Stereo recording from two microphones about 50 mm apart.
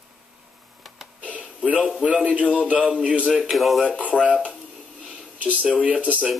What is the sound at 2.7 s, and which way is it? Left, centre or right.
Synthetic singing, right.